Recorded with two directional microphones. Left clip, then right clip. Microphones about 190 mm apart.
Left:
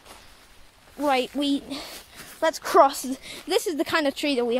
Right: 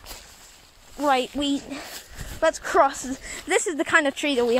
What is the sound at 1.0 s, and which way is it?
Speech, centre (ahead or behind).